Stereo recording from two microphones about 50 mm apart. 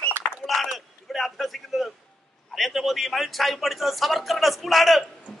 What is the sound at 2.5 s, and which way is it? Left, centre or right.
A woman's voice, centre.